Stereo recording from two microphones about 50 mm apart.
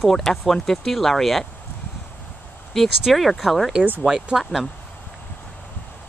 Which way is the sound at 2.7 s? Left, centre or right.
Centre.